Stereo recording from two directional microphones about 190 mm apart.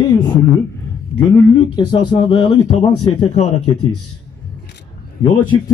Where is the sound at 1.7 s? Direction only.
25° left (ahead or behind).